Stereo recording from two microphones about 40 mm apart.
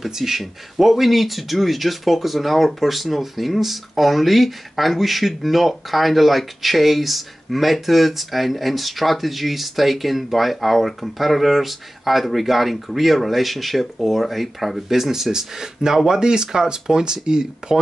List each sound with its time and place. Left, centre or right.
0.0 s speech: centre